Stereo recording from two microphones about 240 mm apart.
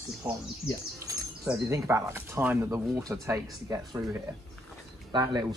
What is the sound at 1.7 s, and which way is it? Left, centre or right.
Speech, centre.